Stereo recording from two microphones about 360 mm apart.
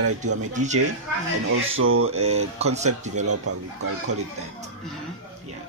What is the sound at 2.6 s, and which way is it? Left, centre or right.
Speech, centre.